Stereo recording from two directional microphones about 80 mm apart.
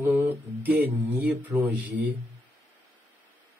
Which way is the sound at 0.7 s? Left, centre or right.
Right.